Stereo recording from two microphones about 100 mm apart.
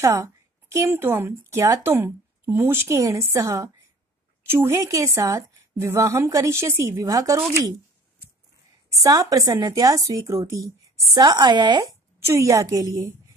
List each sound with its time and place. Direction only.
0.0 s a woman's voice: 30° right (ahead or behind)
9.0 s a woman's voice: 35° right (ahead or behind)
11.8 s a woman's voice: 30° right (ahead or behind)